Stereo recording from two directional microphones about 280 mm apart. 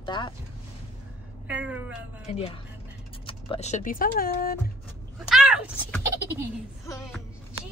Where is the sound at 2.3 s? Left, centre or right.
Left.